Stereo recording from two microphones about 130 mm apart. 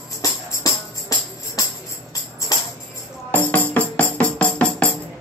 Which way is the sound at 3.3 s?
10° left (ahead or behind).